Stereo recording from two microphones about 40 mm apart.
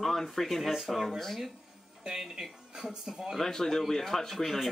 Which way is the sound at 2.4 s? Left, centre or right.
Centre.